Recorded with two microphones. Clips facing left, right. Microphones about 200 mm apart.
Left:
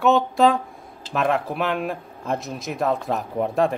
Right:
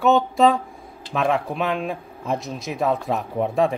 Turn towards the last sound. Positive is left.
turn(degrees=0)  # may be behind; listen again after turning